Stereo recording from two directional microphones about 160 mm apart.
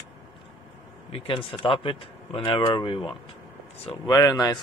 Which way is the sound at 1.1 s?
35° left (ahead or behind).